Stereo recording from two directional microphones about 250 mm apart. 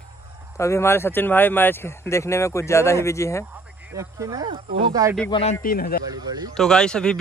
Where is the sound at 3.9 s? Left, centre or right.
Centre.